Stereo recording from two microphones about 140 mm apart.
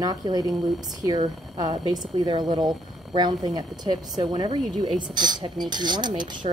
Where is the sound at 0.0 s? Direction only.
30° right (ahead or behind).